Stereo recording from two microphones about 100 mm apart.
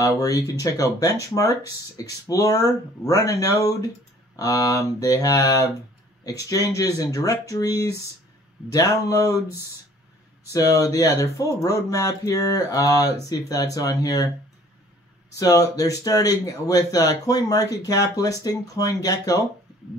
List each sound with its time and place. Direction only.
0.0 s speech: 35° left (ahead or behind)
15.3 s speech: 35° left (ahead or behind)